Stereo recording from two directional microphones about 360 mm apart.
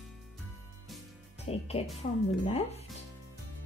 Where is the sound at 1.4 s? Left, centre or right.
Centre.